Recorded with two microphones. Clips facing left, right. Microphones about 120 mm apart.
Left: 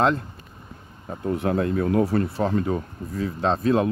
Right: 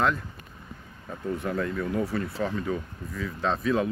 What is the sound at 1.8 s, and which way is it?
Speech, 50° left (ahead or behind).